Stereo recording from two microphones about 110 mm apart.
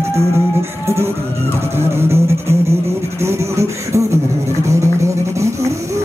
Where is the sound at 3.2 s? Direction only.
25° right (ahead or behind).